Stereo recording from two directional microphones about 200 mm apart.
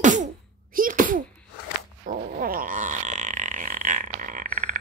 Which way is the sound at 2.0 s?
45° right (ahead or behind).